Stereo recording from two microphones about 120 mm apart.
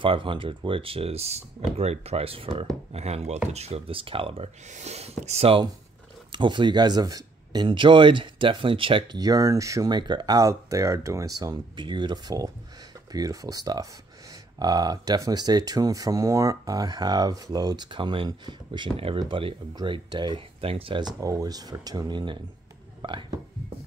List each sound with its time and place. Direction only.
0.0 s speech: 45° right (ahead or behind)
2.9 s speech: 65° right (ahead or behind)
4.6 s speech: 70° right (ahead or behind)
6.3 s speech: 40° right (ahead or behind)
9.2 s speech: 30° right (ahead or behind); by 21.0 s 50° right (ahead or behind)
21.0 s speech: 30° right (ahead or behind)